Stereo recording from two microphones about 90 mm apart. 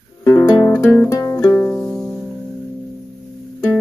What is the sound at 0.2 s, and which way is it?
Music, 35° left (ahead or behind).